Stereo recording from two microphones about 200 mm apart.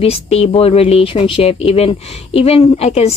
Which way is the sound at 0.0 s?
30° left (ahead or behind).